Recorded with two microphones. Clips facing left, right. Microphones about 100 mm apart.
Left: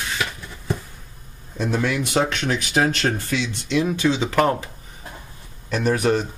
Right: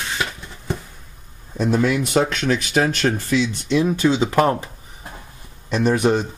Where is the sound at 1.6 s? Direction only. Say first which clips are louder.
Right 4 dB; 5° right (ahead or behind).